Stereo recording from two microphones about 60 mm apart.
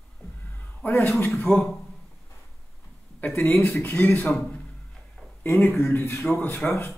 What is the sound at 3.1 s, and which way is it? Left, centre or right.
Speech, left.